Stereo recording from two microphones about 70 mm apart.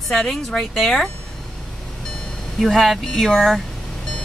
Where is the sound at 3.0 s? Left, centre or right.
Centre.